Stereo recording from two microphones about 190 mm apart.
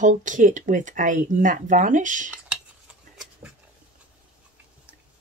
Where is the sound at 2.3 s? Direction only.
5° right (ahead or behind).